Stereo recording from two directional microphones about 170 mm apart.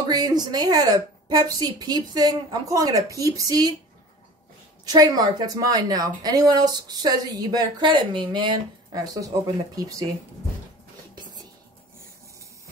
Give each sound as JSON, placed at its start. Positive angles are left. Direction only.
{"t": 0.1, "sound": "a woman's voice", "side_deg": -25}
{"t": 4.8, "sound": "a woman's voice", "side_deg": -20}